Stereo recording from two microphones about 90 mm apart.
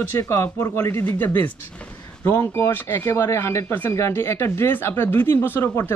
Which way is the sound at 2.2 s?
30° left (ahead or behind).